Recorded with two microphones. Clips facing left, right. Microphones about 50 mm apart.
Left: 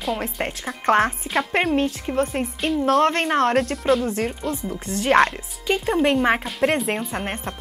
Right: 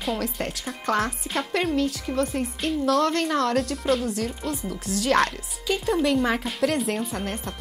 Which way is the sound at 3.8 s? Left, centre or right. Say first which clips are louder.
Left 4 dB; centre.